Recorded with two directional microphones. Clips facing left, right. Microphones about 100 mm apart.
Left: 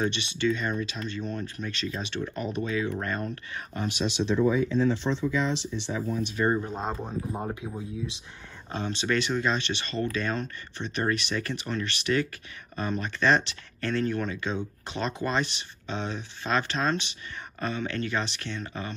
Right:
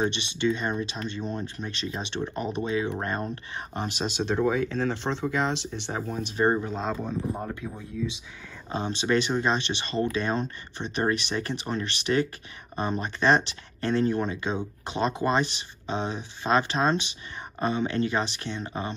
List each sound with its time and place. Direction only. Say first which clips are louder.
0.0 s speech: right 1 dB; 20° right (ahead or behind)
3.0 s speech: right 1 dB; 35° right (ahead or behind)
4.4 s speech: left 2 dB; 65° right (ahead or behind)
6.3 s speech: right 3 dB; 30° right (ahead or behind)
6.7 s speech: right 2 dB; 15° left (ahead or behind)
8.6 s speech: right 2 dB; 20° right (ahead or behind)